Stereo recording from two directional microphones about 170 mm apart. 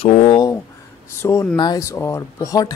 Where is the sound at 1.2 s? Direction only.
15° left (ahead or behind).